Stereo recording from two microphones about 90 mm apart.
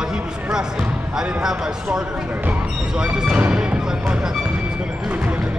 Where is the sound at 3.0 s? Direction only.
10° right (ahead or behind).